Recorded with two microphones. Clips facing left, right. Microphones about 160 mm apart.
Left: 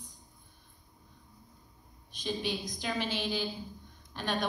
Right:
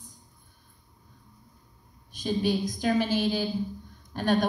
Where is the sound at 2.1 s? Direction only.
45° right (ahead or behind).